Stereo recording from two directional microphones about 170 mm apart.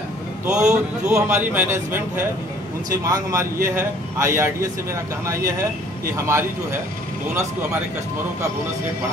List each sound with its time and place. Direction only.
0.5 s a man's voice: 5° right (ahead or behind)